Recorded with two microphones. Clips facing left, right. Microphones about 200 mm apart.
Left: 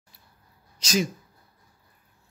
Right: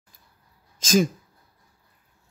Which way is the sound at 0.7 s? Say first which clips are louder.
Right 5 dB; 50° right (ahead or behind).